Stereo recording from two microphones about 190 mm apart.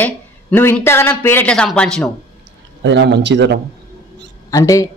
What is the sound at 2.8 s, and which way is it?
Speech, 65° right (ahead or behind).